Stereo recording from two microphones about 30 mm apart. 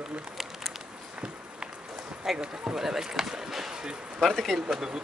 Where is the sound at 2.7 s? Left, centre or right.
Centre.